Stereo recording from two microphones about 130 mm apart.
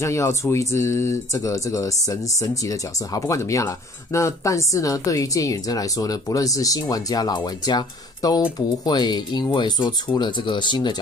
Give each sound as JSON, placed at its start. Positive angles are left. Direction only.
{"t": 0.0, "sound": "speech", "side_deg": 20}